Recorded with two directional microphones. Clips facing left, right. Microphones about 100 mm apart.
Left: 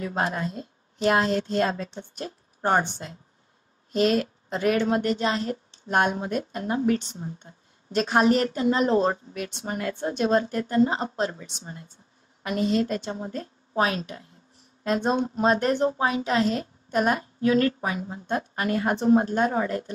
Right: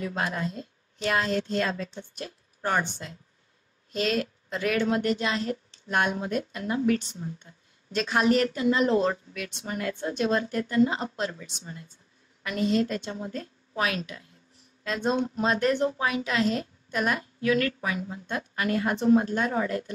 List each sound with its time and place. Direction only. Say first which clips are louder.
0.0 s a woman's voice: left 3 dB; 35° left (ahead or behind)